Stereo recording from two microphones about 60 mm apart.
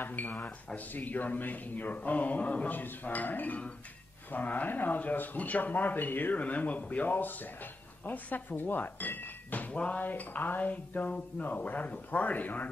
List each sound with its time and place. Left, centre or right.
0.0 s speech: left